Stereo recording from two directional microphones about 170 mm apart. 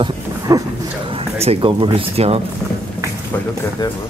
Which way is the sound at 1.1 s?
35° right (ahead or behind).